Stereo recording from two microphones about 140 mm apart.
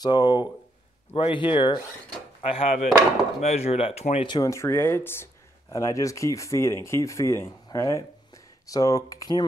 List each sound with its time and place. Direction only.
0.0 s speech: 30° left (ahead or behind); by 4.3 s 50° left (ahead or behind)
4.3 s speech: 25° left (ahead or behind)